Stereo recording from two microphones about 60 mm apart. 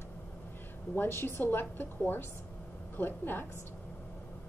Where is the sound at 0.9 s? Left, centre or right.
Left.